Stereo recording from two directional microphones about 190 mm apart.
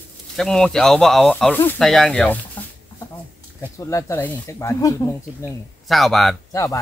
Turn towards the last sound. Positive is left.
turn(degrees=15)  # may be behind; listen again after turning